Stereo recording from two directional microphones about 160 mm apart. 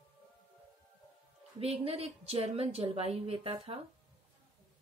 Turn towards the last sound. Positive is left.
turn(degrees=-35)  # may be behind; listen again after turning